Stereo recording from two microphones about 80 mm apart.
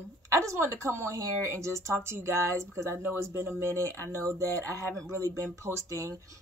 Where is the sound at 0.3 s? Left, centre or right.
Right.